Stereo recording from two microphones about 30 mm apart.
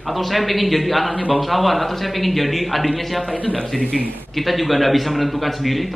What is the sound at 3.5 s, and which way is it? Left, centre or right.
Speech, left.